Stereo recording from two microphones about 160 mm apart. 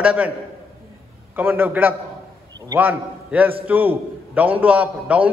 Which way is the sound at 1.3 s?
10° right (ahead or behind).